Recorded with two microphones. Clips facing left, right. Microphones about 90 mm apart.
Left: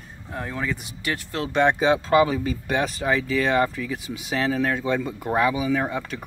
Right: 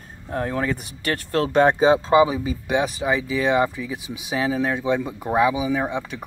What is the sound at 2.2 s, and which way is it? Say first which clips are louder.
Speech: right 2 dB; 15° right (ahead or behind).